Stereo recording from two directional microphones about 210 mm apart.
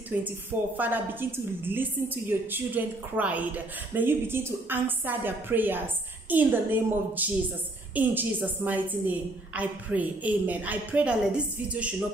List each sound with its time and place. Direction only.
0.7 s a woman's voice: 10° right (ahead or behind)